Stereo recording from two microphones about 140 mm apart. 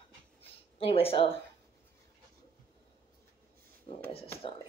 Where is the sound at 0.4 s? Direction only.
40° left (ahead or behind).